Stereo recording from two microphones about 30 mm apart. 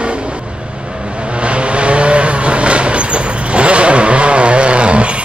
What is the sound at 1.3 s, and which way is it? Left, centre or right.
Vehicle, right.